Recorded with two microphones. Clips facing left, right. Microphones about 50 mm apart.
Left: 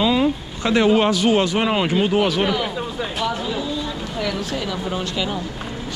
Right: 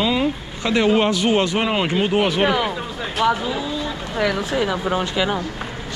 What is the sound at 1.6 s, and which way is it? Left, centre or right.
A man's voice, centre.